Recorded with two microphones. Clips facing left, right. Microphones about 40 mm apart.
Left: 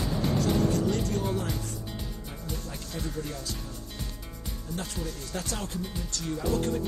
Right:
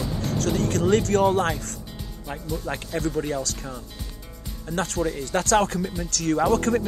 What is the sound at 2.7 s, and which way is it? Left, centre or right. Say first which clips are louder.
Speech: right 13 dB; right.